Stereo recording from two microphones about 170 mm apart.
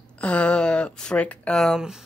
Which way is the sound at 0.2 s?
5° left (ahead or behind).